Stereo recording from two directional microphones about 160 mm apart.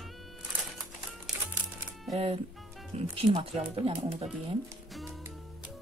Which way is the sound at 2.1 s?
35° right (ahead or behind).